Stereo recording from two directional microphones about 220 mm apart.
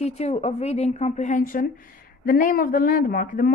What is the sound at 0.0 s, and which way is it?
A woman's voice, 30° left (ahead or behind).